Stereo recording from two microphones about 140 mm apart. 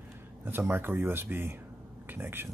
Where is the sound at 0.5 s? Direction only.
15° right (ahead or behind).